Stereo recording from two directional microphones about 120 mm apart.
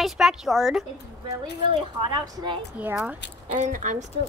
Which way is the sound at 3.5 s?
90° right.